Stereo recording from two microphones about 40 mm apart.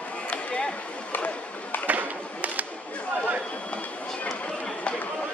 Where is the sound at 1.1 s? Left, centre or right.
Left.